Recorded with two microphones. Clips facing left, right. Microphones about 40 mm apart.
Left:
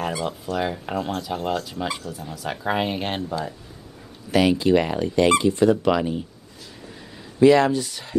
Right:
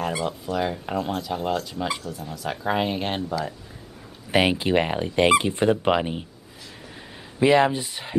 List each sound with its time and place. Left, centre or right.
0.6 s speech: centre
4.3 s speech: right
7.3 s speech: right